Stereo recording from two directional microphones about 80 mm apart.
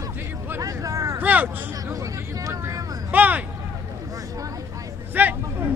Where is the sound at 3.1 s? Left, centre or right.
Right.